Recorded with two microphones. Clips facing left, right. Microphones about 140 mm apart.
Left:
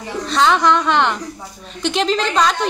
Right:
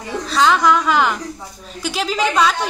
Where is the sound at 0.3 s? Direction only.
Centre (ahead or behind).